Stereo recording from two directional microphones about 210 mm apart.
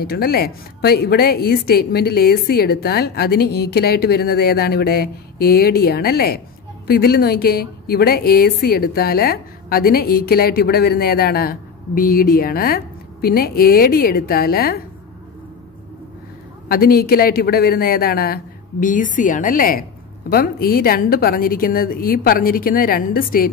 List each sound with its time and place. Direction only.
0.0 s a woman's voice: 50° left (ahead or behind)
16.6 s a woman's voice: 45° left (ahead or behind)